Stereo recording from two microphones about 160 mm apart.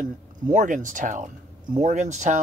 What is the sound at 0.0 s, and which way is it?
Speech, 50° right (ahead or behind).